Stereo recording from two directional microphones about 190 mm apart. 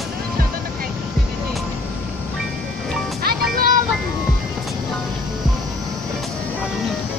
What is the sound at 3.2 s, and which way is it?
Music, 55° right (ahead or behind).